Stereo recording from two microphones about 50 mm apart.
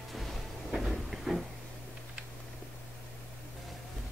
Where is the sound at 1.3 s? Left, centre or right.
Centre.